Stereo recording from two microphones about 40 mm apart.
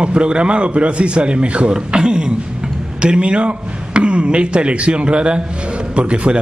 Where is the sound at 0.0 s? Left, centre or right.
Right.